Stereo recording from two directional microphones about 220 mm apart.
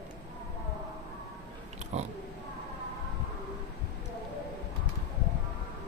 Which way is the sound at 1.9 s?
30° right (ahead or behind).